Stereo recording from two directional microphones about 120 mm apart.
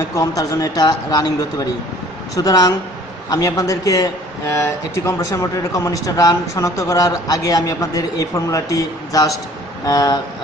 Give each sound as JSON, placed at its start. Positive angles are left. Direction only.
{"t": 0.1, "sound": "speech", "side_deg": 30}
{"t": 2.3, "sound": "speech", "side_deg": 30}